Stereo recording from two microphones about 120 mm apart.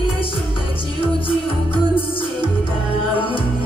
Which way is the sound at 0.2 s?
45° left (ahead or behind).